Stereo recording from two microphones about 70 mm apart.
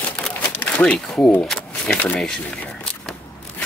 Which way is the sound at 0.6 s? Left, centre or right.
Centre.